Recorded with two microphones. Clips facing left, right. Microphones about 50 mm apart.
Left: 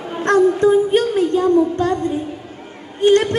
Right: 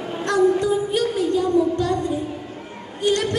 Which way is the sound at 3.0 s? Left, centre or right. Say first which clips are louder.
Left 7 dB; left.